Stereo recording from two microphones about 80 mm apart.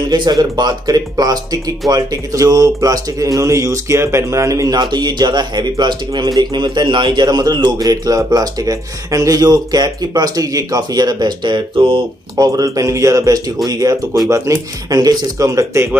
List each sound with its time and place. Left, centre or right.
0.1 s speech: right
12.4 s speech: right
14.3 s speech: right